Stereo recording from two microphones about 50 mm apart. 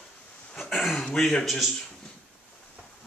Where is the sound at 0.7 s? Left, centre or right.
Centre.